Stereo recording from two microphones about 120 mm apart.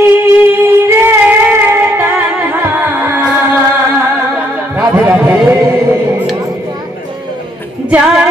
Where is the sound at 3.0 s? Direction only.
15° right (ahead or behind).